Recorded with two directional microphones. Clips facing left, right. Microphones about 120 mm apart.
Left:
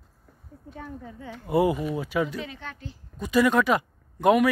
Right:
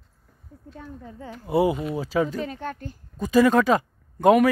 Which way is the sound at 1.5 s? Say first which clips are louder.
Right 1 dB; 25° right (ahead or behind).